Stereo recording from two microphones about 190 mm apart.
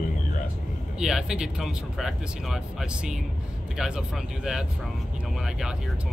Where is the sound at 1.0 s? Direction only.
5° right (ahead or behind).